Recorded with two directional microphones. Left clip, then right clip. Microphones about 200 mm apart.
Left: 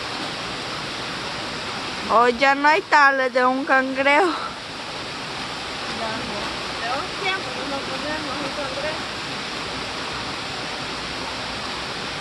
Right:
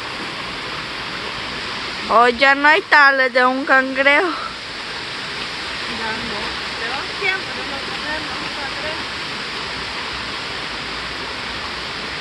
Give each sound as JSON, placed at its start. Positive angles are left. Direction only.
{"t": 2.0, "sound": "speech", "side_deg": -10}